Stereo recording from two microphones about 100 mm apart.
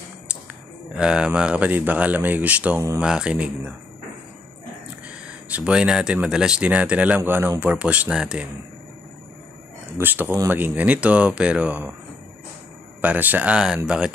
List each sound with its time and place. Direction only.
0.9 s speech: 10° right (ahead or behind)
5.0 s speech: 10° right (ahead or behind)
9.9 s speech: 20° right (ahead or behind)
13.0 s speech: 15° right (ahead or behind)